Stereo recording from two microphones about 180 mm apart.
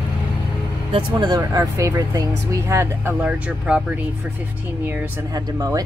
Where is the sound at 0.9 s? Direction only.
25° right (ahead or behind).